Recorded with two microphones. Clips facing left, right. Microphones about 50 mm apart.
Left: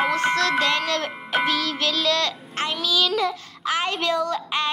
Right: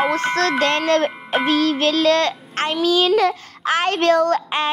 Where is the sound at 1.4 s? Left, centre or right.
Right.